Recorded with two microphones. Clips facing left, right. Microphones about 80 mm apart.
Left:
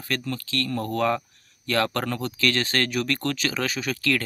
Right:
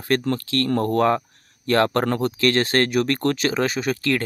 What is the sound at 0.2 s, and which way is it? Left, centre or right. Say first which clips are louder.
Speech: right 6 dB; right.